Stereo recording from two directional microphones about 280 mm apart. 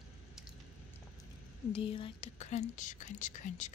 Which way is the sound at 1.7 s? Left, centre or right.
Centre.